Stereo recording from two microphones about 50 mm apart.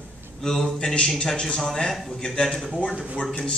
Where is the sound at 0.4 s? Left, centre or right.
Centre.